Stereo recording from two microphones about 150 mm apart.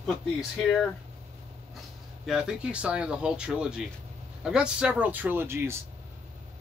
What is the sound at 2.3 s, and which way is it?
Speech, 5° right (ahead or behind).